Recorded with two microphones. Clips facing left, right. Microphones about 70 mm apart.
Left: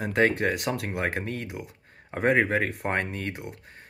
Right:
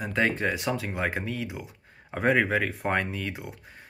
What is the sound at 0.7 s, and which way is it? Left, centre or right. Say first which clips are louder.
Speech: even; left.